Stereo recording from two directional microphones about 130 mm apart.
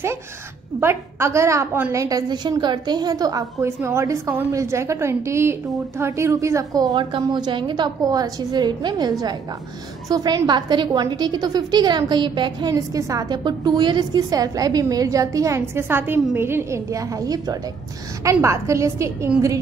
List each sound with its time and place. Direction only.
0.7 s a woman's voice: 20° right (ahead or behind)